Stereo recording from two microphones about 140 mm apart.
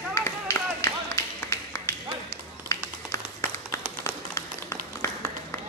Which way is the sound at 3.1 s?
20° left (ahead or behind).